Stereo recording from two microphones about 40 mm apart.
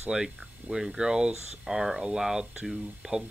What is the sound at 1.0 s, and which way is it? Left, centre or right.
Speech, centre.